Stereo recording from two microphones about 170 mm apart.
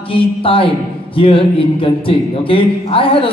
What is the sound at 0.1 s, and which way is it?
A man's voice, 30° left (ahead or behind).